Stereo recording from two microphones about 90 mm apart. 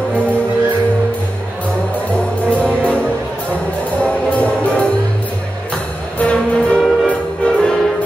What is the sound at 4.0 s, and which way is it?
Music, 15° left (ahead or behind).